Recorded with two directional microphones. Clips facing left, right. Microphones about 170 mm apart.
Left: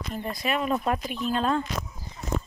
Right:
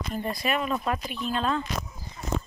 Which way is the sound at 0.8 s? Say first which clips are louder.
Left 2 dB; 40° left (ahead or behind).